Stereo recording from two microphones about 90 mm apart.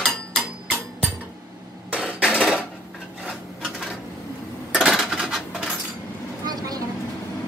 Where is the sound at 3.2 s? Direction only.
5° right (ahead or behind).